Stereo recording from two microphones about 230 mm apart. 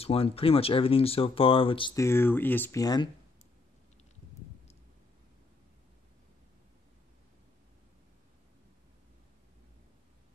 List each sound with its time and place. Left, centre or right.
0.0 s speech: left